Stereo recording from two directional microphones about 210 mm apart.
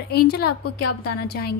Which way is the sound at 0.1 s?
50° left (ahead or behind).